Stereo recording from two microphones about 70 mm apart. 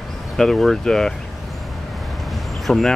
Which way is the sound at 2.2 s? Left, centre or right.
Centre.